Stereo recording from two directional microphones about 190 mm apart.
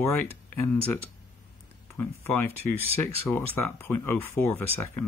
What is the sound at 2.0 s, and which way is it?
Speech, 10° left (ahead or behind).